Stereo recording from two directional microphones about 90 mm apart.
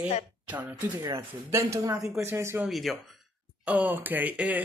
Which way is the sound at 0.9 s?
35° right (ahead or behind).